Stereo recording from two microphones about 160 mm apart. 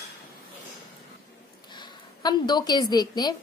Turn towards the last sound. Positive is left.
turn(degrees=25)  # may be behind; listen again after turning